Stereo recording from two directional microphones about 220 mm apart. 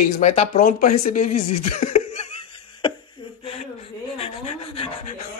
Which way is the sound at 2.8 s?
25° left (ahead or behind).